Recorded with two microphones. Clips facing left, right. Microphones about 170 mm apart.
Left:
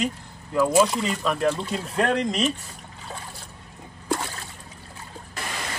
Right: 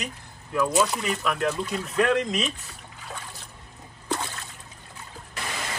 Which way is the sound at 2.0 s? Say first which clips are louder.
Even; 40° left (ahead or behind).